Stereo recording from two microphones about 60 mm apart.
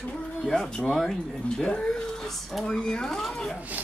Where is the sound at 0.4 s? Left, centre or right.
Centre.